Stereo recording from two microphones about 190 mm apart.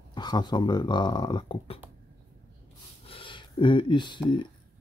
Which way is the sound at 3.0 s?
30° left (ahead or behind).